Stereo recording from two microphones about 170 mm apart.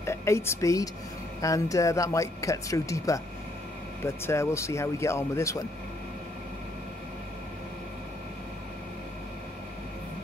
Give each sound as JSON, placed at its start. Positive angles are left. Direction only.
{"t": 0.0, "sound": "speech", "side_deg": 15}